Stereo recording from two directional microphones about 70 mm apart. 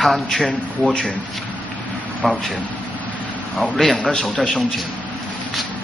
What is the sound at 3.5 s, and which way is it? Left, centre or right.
Speech, centre.